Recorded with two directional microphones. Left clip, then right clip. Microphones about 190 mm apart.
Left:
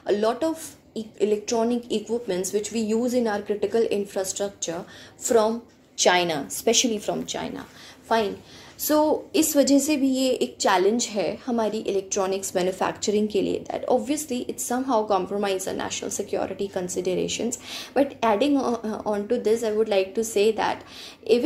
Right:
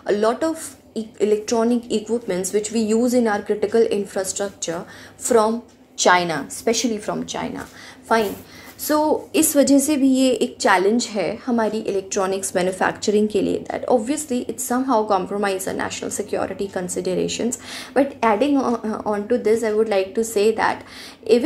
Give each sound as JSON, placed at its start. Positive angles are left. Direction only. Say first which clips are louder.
{"t": 0.0, "sound": "a woman's voice", "louder": "right 4 dB", "side_deg": -10}
{"t": 8.1, "sound": "a woman's voice", "louder": "right 4 dB", "side_deg": -15}